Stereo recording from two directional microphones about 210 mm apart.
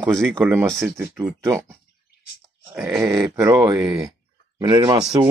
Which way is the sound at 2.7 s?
10° right (ahead or behind).